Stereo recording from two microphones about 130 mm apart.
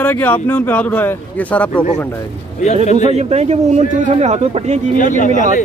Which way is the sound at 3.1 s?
55° right (ahead or behind).